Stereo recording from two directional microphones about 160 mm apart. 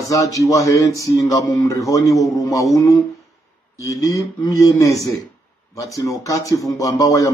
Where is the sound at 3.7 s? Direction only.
20° left (ahead or behind).